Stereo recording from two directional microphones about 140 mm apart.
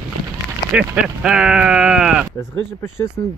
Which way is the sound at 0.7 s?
5° right (ahead or behind).